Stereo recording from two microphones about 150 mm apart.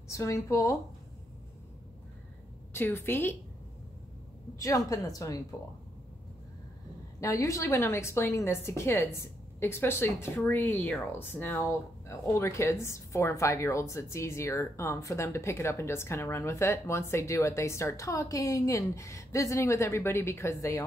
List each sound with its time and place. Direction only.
0.1 s a woman's voice: 20° left (ahead or behind)
2.7 s a woman's voice: 15° left (ahead or behind)
4.6 s a woman's voice: 20° left (ahead or behind)
7.2 s a woman's voice: 20° left (ahead or behind)